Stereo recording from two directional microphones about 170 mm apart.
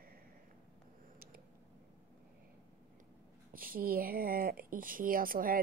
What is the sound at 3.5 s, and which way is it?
Speech, 55° right (ahead or behind).